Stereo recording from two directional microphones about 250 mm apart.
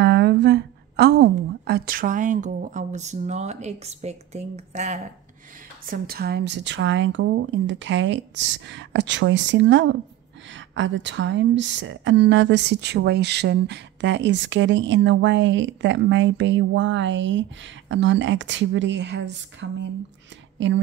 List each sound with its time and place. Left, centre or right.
0.0 s a woman's voice: right
5.9 s speech: right